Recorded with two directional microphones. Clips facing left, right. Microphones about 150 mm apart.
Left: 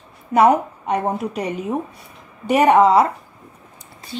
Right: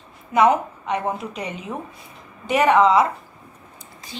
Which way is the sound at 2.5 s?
10° left (ahead or behind).